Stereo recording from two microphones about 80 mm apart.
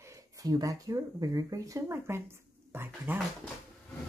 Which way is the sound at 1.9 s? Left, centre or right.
Right.